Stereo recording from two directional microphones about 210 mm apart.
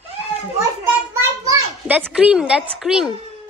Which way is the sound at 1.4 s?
10° right (ahead or behind).